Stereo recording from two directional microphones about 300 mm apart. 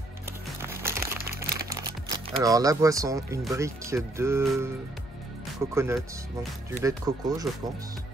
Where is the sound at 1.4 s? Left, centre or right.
Right.